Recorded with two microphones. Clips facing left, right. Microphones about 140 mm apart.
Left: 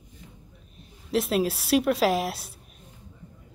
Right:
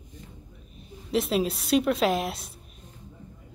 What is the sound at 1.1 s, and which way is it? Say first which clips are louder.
Speech: left 1 dB; centre (ahead or behind).